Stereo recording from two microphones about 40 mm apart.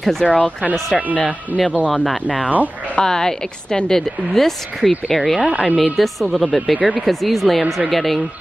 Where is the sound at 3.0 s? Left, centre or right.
Centre.